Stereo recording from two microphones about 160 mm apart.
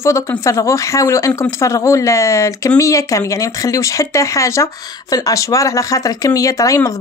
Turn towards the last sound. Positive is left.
turn(degrees=20)  # may be behind; listen again after turning